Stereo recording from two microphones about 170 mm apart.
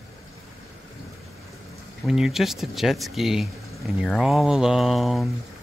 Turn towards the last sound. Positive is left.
turn(degrees=0)  # may be behind; listen again after turning